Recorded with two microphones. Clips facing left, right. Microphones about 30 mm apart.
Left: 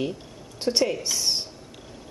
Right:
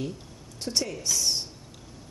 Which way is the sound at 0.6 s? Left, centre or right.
Left.